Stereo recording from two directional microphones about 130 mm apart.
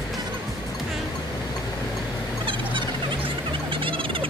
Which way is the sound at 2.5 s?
40° right (ahead or behind).